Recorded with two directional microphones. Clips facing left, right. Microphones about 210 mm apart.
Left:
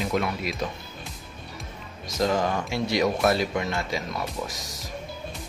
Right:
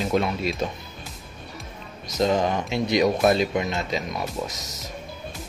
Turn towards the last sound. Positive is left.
turn(degrees=-20)  # may be behind; listen again after turning